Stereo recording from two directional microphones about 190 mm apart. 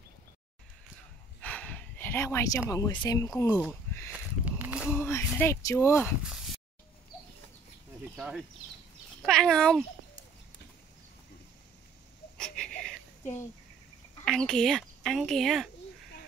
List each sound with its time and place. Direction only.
1.4 s gasp: 10° left (ahead or behind)
2.7 s speech: 15° left (ahead or behind)
4.1 s a sound: 5° right (ahead or behind)
4.8 s a sound: 10° left (ahead or behind)
5.4 s speech: 15° left (ahead or behind)
8.2 s speech: 5° right (ahead or behind)
12.4 s wheeze: 5° left (ahead or behind)
14.2 s speech: centre (ahead or behind)